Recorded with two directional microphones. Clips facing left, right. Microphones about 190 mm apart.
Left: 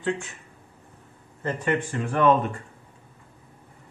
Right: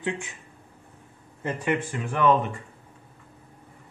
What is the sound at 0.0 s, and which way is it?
Speech, 15° right (ahead or behind).